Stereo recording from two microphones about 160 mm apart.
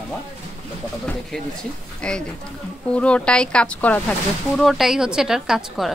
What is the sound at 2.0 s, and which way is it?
A woman's voice, 5° left (ahead or behind).